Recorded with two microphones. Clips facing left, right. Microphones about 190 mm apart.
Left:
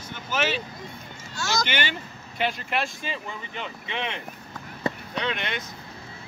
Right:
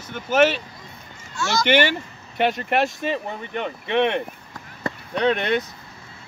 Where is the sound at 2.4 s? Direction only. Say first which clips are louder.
Right 7 dB; 60° right (ahead or behind).